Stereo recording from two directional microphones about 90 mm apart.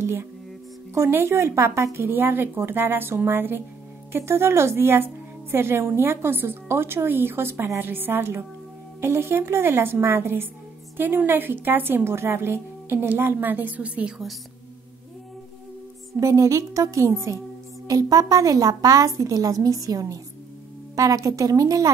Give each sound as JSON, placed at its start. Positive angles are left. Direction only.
{"t": 0.0, "sound": "music", "side_deg": -25}
{"t": 0.9, "sound": "a woman's voice", "side_deg": -30}
{"t": 16.2, "sound": "a woman's voice", "side_deg": -35}